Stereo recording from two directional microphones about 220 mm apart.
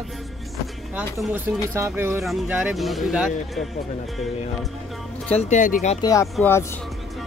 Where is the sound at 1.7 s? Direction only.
10° right (ahead or behind).